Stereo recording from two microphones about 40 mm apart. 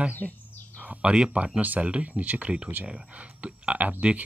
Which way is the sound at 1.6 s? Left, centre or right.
Right.